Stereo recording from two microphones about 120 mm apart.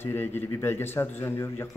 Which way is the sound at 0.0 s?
20° left (ahead or behind).